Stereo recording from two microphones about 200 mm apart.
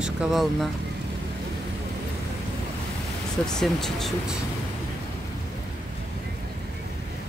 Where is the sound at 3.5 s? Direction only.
Centre (ahead or behind).